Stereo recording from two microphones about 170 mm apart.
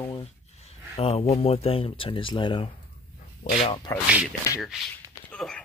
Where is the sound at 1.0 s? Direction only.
35° left (ahead or behind).